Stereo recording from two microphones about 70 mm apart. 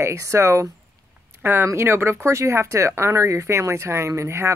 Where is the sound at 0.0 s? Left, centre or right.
Right.